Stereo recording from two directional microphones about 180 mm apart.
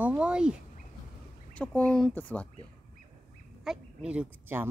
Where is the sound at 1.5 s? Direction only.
5° left (ahead or behind).